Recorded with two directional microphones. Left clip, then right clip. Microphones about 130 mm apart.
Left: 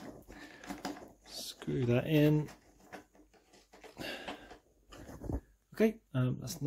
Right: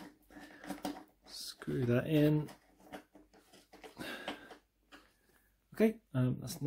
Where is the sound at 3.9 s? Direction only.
5° left (ahead or behind).